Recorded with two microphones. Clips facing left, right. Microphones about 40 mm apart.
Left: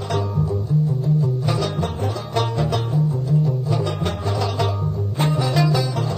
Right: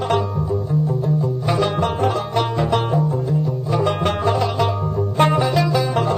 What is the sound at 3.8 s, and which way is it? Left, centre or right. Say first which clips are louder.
Music: right 6 dB; right.